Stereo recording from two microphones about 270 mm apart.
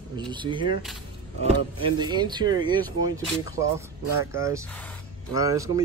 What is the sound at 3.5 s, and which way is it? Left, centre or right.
Speech, centre.